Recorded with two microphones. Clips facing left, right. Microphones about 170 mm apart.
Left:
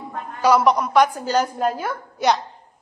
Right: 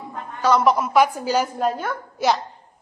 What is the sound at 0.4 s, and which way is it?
Speech, 10° left (ahead or behind).